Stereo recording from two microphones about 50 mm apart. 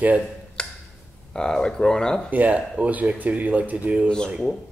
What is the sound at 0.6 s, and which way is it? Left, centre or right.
Tick-tock, centre.